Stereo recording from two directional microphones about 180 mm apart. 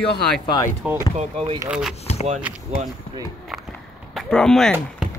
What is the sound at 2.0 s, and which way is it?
Speech, 35° left (ahead or behind).